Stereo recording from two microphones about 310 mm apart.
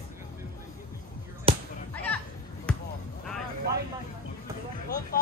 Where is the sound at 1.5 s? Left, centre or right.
Centre.